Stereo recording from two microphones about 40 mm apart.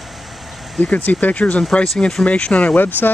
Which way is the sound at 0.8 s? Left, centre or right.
Left.